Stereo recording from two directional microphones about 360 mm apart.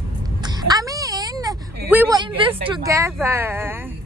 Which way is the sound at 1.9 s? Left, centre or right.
Centre.